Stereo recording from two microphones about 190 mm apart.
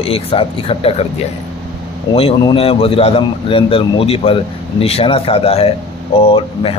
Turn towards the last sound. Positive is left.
turn(degrees=30)  # may be behind; listen again after turning